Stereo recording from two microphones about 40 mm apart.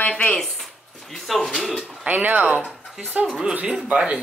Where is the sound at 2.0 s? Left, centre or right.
Right.